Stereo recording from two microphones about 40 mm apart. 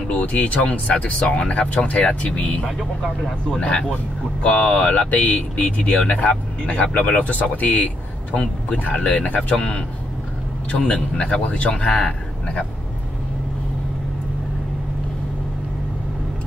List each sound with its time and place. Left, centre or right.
0.1 s a man's voice: left
8.9 s a man's voice: left